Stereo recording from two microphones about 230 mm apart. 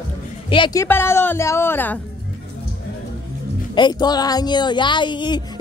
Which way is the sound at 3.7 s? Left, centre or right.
Centre.